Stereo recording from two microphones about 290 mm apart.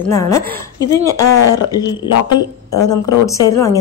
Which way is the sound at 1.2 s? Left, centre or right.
Left.